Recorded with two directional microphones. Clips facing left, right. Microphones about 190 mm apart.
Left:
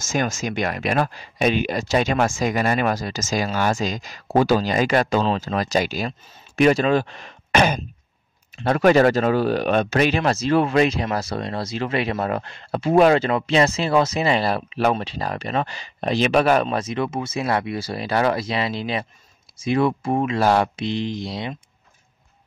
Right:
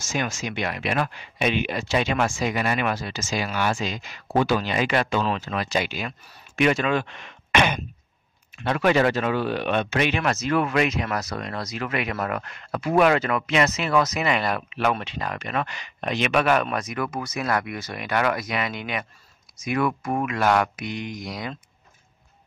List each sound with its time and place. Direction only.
0.0 s speech: 45° left (ahead or behind); by 21.5 s 25° left (ahead or behind)